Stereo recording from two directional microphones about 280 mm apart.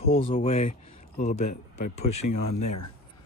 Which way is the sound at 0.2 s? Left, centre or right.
Centre.